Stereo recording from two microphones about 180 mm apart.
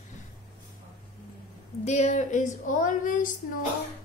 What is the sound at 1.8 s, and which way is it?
Child singing, 40° left (ahead or behind).